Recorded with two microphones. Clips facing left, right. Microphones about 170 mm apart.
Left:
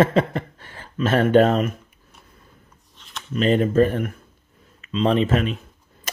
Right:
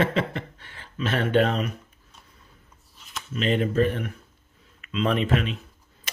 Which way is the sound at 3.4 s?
40° left (ahead or behind).